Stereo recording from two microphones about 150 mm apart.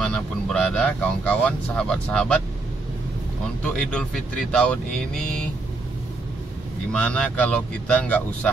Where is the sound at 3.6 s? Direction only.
5° left (ahead or behind).